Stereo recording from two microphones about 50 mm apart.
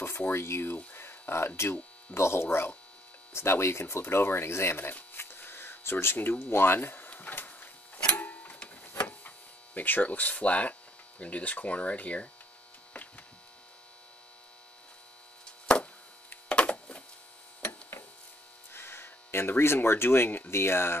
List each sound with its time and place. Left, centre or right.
0.3 s speech: left
0.9 s a sound: left
2.1 s speech: left
2.4 s speech: left
3.3 s speech: left
5.1 s a sound: left
6.4 s music: left
8.1 s printer: left
9.8 s speech: left
15.4 s a sound: centre
18.7 s speech: left